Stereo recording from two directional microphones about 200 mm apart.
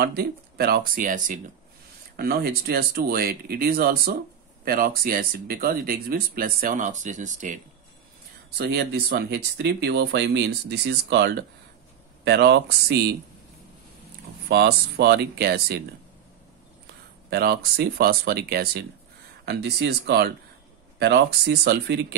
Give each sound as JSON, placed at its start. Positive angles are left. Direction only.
{"t": 0.0, "sound": "speech", "side_deg": -55}
{"t": 8.5, "sound": "speech", "side_deg": -55}
{"t": 14.5, "sound": "speech", "side_deg": -55}
{"t": 17.3, "sound": "speech", "side_deg": -50}